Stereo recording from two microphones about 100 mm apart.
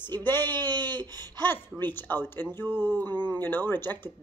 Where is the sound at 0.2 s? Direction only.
20° left (ahead or behind).